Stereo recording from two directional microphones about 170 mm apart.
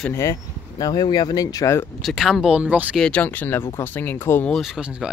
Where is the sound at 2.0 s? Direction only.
Centre (ahead or behind).